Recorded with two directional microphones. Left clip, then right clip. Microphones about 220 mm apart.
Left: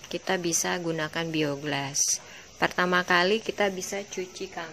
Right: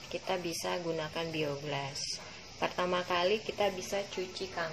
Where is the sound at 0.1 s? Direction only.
45° left (ahead or behind).